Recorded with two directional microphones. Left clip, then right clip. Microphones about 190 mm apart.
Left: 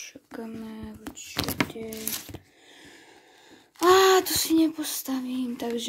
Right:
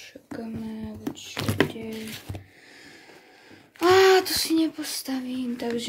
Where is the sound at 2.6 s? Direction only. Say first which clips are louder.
Right 2 dB; 15° left (ahead or behind).